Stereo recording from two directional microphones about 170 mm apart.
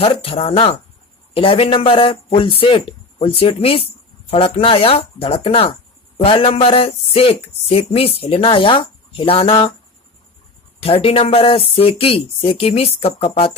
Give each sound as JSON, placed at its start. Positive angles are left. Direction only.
{"t": 0.0, "sound": "speech", "side_deg": 35}
{"t": 10.8, "sound": "speech", "side_deg": 35}